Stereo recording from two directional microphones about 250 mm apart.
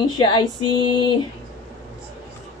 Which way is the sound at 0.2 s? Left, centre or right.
Centre.